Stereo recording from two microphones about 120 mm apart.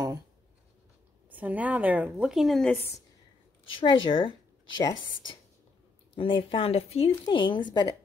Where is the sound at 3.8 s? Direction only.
40° left (ahead or behind).